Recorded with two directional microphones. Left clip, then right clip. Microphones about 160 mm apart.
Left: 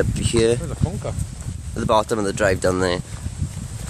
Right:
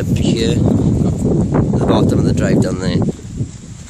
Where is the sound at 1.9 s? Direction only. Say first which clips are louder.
Even; centre (ahead or behind).